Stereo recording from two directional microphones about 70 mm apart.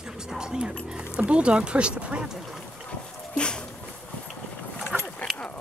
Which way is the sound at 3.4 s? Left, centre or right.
Centre.